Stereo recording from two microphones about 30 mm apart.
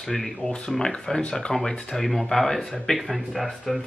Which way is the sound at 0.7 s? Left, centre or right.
Left.